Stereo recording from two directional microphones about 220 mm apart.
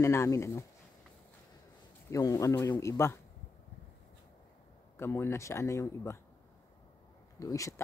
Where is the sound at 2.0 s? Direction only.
15° left (ahead or behind).